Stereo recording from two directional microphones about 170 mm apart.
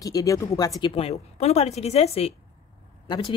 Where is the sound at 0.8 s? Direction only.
35° left (ahead or behind).